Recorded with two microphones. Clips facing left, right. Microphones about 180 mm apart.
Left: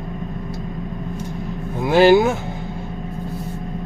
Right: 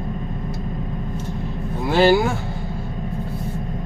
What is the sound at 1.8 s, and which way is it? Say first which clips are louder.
Vehicle: left 3 dB; 15° left (ahead or behind).